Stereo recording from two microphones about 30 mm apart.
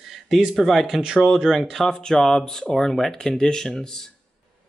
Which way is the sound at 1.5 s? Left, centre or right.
Centre.